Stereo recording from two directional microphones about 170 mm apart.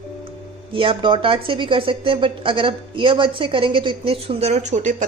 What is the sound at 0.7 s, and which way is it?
Speech, 30° right (ahead or behind).